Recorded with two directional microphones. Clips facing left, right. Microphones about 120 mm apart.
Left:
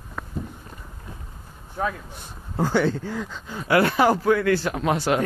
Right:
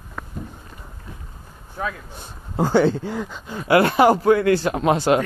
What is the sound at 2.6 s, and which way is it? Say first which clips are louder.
A man's voice: right 4 dB; 25° right (ahead or behind).